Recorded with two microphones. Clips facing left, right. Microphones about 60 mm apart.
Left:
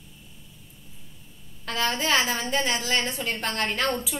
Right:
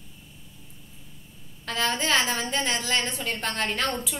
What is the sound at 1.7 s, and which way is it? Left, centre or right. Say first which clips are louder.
A woman's voice: even; centre.